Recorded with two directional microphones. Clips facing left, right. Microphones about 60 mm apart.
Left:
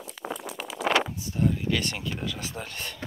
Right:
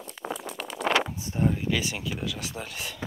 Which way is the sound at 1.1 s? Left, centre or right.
Right.